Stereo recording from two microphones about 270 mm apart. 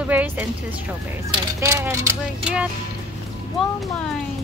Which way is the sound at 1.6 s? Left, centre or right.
Centre.